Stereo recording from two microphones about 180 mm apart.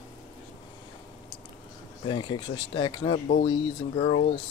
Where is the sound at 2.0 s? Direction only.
30° left (ahead or behind).